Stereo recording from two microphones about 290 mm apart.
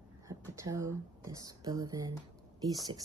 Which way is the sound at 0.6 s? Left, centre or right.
Centre.